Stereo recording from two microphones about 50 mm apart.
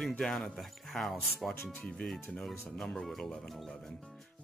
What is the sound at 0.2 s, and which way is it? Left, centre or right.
Speech, centre.